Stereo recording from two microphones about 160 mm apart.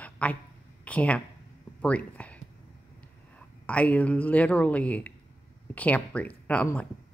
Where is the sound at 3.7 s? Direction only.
10° left (ahead or behind).